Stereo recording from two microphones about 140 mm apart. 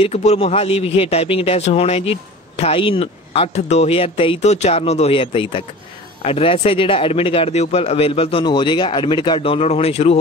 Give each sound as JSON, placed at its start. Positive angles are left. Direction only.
{"t": 0.0, "sound": "a man's voice", "side_deg": 50}